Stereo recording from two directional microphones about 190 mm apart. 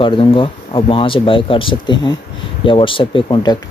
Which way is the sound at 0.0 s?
30° left (ahead or behind).